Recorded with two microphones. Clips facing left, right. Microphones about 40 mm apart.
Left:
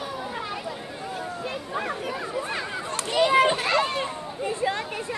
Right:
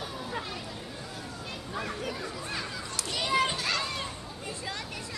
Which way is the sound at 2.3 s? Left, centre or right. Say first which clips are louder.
Left 7 dB; left.